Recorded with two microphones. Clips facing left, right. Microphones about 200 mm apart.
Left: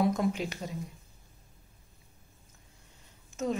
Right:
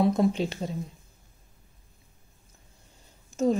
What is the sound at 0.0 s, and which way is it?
Speech, 30° right (ahead or behind).